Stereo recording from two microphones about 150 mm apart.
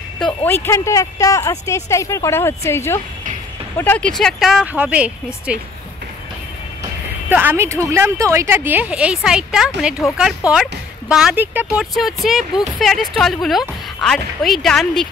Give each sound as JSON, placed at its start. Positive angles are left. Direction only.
{"t": 0.2, "sound": "speech", "side_deg": 10}
{"t": 7.2, "sound": "speech", "side_deg": -15}